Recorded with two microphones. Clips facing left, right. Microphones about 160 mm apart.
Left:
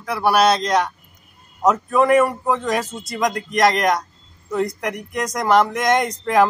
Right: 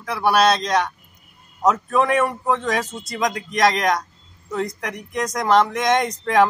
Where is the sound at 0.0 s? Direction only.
5° left (ahead or behind).